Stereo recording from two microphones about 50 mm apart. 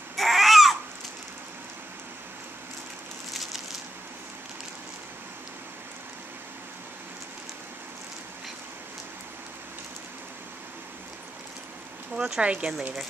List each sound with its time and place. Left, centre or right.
0.1 s babbling: centre
12.2 s speech: right